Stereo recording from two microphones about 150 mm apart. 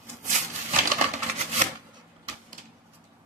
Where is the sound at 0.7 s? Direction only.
50° right (ahead or behind).